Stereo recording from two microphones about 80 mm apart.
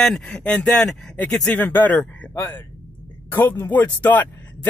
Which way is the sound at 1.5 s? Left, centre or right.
Left.